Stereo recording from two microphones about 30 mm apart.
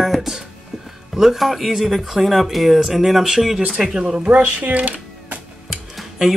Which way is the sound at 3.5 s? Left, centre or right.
Right.